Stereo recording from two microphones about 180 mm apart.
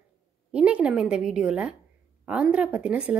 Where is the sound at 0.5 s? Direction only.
5° right (ahead or behind).